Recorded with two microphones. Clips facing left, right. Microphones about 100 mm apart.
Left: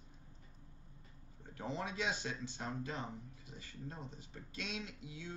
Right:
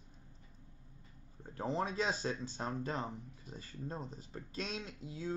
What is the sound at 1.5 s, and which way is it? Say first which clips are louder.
Speech: right 5 dB; 40° right (ahead or behind).